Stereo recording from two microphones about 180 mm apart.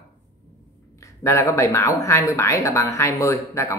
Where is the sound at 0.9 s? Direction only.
15° left (ahead or behind).